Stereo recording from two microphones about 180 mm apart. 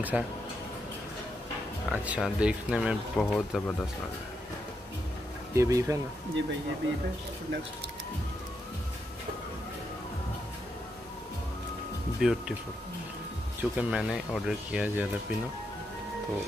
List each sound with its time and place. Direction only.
0.1 s speech: 5° right (ahead or behind)
1.9 s speech: 5° right (ahead or behind)
5.5 s speech: 15° right (ahead or behind)
12.2 s speech: 5° right (ahead or behind)
13.6 s speech: 5° right (ahead or behind)